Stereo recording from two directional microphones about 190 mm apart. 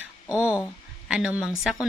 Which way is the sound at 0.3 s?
15° left (ahead or behind).